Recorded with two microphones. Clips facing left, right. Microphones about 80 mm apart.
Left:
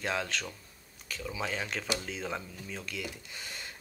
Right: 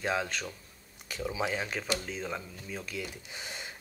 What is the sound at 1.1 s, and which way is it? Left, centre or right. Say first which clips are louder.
Speech: right 4 dB; right.